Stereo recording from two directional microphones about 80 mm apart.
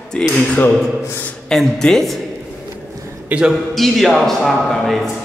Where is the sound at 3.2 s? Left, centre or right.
Centre.